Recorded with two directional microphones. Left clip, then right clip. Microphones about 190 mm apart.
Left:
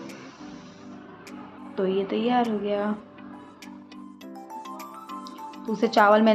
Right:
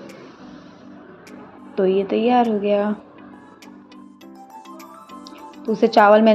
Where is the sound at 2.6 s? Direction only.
20° right (ahead or behind).